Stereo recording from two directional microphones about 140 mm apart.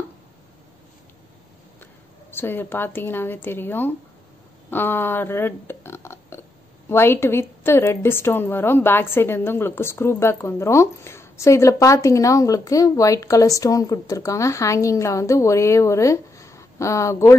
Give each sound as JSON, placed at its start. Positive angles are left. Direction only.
{"t": 2.3, "sound": "a woman's voice", "side_deg": 15}